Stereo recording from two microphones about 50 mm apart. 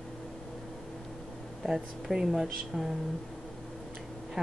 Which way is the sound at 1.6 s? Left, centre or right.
Centre.